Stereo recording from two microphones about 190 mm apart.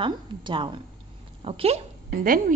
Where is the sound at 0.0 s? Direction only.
25° right (ahead or behind).